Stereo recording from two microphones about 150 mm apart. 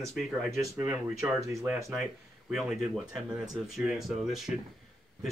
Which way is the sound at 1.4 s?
20° right (ahead or behind).